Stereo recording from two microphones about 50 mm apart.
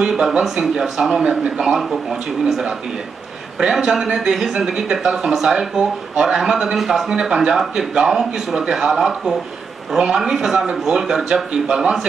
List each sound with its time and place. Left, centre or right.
0.0 s speech: centre
1.2 s speech: right
1.6 s speech: centre